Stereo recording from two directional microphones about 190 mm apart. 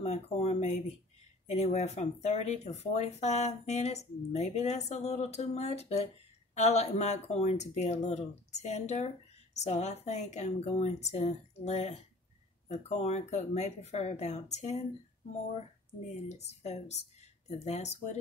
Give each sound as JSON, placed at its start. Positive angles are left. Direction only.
{"t": 0.0, "sound": "speech", "side_deg": 35}
{"t": 16.3, "sound": "speech", "side_deg": 35}